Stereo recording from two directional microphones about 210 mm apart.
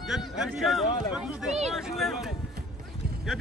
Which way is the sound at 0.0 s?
Centre (ahead or behind).